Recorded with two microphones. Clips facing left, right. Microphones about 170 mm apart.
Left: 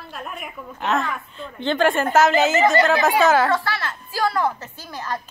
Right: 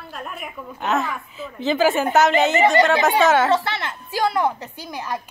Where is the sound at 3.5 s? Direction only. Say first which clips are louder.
Right 2 dB; 20° right (ahead or behind).